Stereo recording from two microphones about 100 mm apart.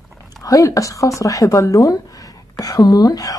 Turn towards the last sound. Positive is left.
turn(degrees=40)  # may be behind; listen again after turning